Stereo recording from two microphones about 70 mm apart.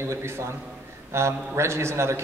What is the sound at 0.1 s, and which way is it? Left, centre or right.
A man's voice, right.